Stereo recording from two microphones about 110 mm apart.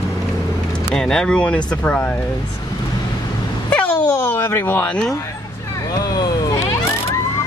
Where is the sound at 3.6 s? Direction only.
15° left (ahead or behind).